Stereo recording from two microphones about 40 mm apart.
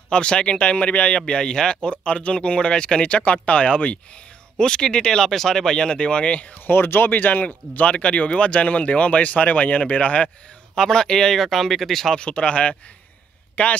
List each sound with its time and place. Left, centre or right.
0.1 s speech: left
0.7 s speech: left
1.2 s speech: centre
4.6 s speech: centre
6.4 s speech: left
6.7 s speech: left
7.7 s speech: left
10.8 s speech: centre
12.2 s speech: left